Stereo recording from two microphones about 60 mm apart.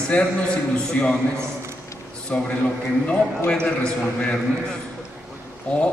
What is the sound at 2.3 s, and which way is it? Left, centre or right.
A man's voice, centre.